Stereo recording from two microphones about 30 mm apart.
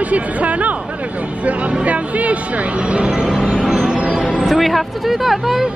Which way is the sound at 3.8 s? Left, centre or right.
Right.